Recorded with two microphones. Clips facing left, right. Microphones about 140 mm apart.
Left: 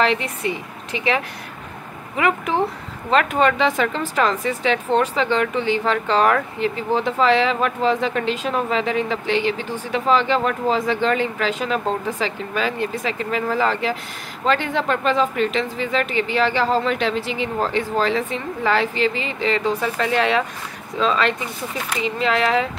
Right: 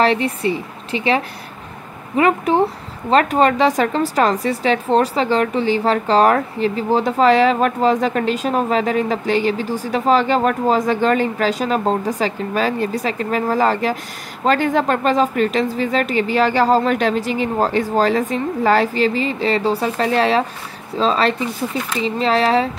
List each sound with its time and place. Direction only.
0.0 s speech: 35° right (ahead or behind)